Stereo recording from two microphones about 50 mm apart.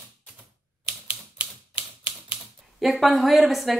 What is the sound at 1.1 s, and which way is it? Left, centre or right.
Typewriter, right.